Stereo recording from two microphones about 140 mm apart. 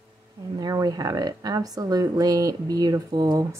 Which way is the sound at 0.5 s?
30° right (ahead or behind).